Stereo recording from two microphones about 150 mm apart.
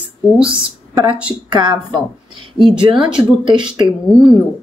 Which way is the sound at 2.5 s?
Centre (ahead or behind).